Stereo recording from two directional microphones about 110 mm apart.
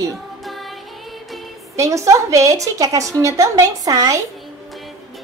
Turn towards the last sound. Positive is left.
turn(degrees=-30)  # may be behind; listen again after turning